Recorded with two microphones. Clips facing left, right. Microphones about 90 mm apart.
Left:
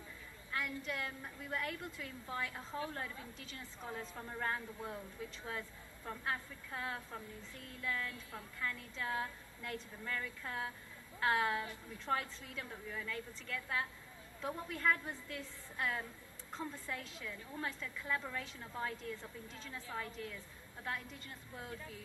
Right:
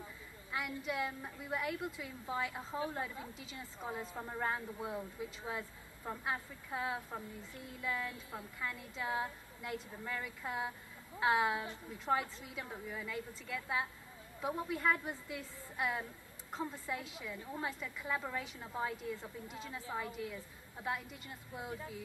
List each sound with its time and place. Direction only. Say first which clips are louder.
0.5 s a woman's voice: right 2 dB; 15° right (ahead or behind)